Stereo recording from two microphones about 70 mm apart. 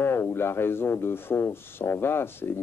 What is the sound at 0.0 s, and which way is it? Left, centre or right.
A man's voice, left.